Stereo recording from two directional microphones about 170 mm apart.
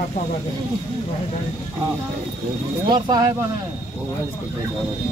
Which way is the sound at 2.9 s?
25° right (ahead or behind).